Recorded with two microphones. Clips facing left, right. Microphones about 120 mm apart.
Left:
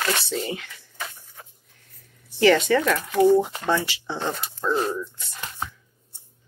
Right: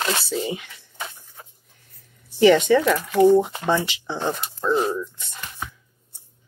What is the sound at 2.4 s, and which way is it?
Speech, 15° right (ahead or behind).